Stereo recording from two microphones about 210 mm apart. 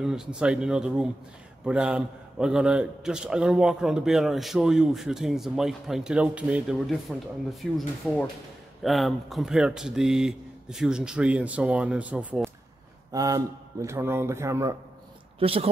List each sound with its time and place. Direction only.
0.0 s a man's voice: 5° right (ahead or behind)
15.3 s speech: 25° right (ahead or behind)